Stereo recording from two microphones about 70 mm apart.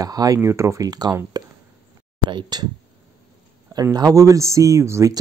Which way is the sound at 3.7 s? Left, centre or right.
Right.